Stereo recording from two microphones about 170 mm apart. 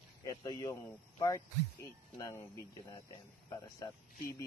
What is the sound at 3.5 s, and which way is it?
Speech, 20° left (ahead or behind).